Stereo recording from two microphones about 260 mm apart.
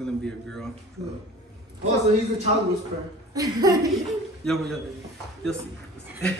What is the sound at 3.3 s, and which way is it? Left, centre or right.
Speech, centre.